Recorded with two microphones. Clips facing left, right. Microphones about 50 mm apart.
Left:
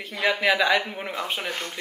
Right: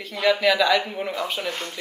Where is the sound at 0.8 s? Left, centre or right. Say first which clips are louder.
Right 3 dB; centre.